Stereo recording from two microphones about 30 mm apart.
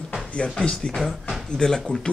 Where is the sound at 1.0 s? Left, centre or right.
Centre.